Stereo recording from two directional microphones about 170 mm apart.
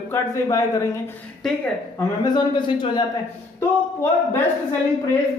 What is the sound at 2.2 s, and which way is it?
Speech, 25° left (ahead or behind).